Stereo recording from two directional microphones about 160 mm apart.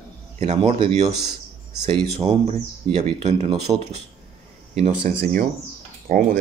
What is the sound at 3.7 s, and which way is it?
Speech, 20° right (ahead or behind).